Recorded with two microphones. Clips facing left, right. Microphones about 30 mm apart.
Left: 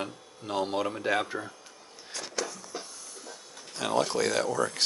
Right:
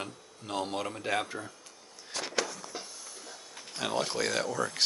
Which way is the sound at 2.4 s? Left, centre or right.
Centre.